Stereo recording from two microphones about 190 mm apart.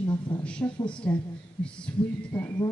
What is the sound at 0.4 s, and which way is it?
A man's voice, 5° left (ahead or behind).